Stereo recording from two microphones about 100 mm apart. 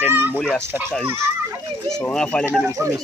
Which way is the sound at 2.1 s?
10° left (ahead or behind).